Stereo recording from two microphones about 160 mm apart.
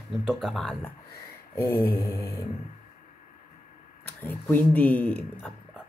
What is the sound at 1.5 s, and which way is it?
Speech, 15° left (ahead or behind).